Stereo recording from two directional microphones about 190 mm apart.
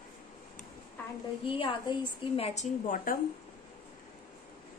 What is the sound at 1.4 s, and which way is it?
A woman's voice, 30° left (ahead or behind).